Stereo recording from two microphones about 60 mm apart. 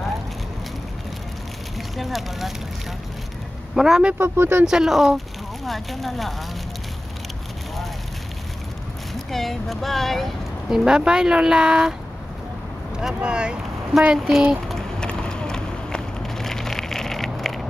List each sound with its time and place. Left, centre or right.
2.0 s speech: centre
3.7 s speech: centre
4.2 s speech: right
4.6 s speech: centre
9.1 s speech: centre
10.7 s speech: centre
12.9 s speech: centre
14.1 s speech: centre
14.7 s a sound: centre